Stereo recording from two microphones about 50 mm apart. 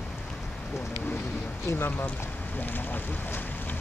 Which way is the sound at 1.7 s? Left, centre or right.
Left.